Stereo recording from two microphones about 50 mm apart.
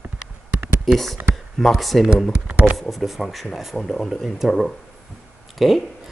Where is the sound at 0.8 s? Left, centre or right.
Centre.